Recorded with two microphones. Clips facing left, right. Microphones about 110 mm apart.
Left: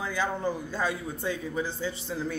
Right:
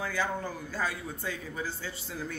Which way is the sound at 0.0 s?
20° left (ahead or behind).